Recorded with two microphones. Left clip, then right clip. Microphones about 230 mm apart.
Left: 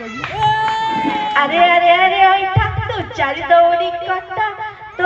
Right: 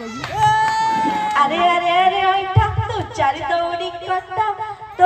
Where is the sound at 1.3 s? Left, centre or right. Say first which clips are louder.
Left 5 dB; right.